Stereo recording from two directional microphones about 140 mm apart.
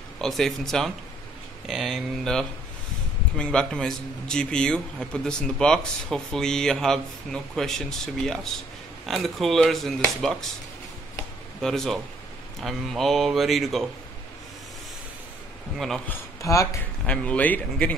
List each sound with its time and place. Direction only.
0.2 s a man's voice: 5° left (ahead or behind)
11.6 s a man's voice: 5° left (ahead or behind)
16.1 s speech: 20° left (ahead or behind)
17.0 s speech: 10° left (ahead or behind)